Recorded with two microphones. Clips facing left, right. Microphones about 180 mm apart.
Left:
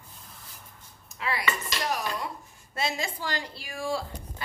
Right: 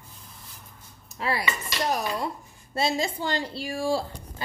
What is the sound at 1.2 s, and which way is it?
Dishes, 35° right (ahead or behind).